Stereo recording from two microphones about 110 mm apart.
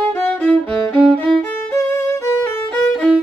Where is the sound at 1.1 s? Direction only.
10° left (ahead or behind).